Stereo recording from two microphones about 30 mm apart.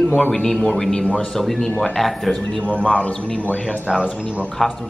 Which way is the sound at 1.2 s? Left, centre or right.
Centre.